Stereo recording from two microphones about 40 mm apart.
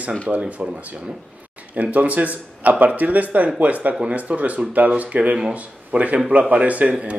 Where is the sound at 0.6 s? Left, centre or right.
Right.